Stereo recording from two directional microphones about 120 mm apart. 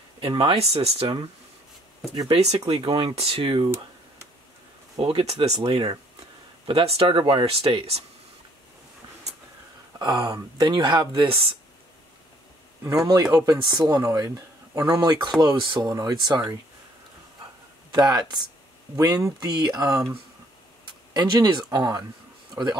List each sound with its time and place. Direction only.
0.2 s speech: 45° right (ahead or behind)
2.3 s speech: 60° right (ahead or behind)
2.7 s speech: 50° right (ahead or behind)
4.9 s speech: 55° right (ahead or behind)
5.6 s speech: 40° right (ahead or behind)
6.7 s speech: 50° right (ahead or behind)
7.4 s speech: 55° right (ahead or behind)
9.9 s speech: 35° right (ahead or behind)
12.9 s speech: 30° right (ahead or behind)
17.9 s speech: 35° right (ahead or behind)
21.1 s speech: 35° right (ahead or behind)